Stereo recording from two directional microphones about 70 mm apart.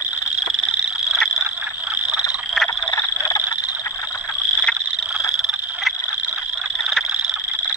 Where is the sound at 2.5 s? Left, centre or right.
Centre.